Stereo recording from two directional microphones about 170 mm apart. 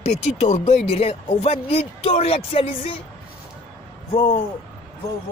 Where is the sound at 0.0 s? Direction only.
40° left (ahead or behind).